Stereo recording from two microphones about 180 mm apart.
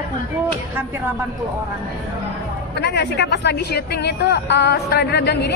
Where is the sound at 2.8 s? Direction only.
70° left (ahead or behind).